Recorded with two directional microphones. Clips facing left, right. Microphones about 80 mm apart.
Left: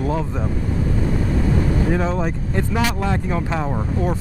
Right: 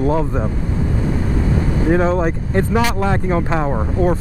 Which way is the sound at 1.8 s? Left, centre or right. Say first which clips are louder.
Right 5 dB; right.